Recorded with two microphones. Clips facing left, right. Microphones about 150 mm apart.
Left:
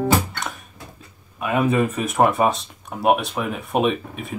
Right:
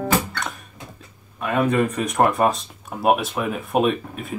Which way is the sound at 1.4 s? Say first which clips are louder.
Even; 5° left (ahead or behind).